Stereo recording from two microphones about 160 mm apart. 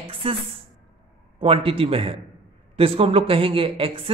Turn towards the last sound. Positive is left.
turn(degrees=-35)  # may be behind; listen again after turning